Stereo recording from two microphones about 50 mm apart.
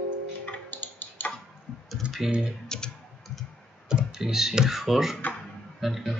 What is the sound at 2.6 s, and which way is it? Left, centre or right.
Tick-tock, centre.